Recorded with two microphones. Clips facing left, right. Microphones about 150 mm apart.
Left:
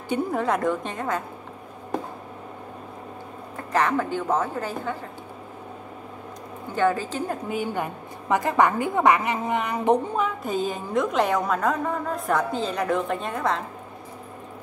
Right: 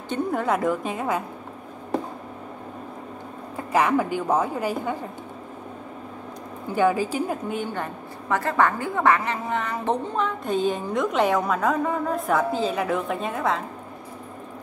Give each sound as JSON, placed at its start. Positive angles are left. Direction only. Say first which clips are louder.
{"t": 0.1, "sound": "a woman's voice", "louder": "even", "side_deg": 0}
{"t": 3.5, "sound": "a woman's voice", "louder": "right 2 dB", "side_deg": -10}
{"t": 6.7, "sound": "a woman's voice", "louder": "right 2 dB", "side_deg": -10}
{"t": 7.4, "sound": "a woman's voice", "louder": "left 1 dB", "side_deg": 5}